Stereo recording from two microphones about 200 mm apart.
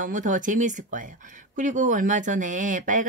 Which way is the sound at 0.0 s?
40° right (ahead or behind).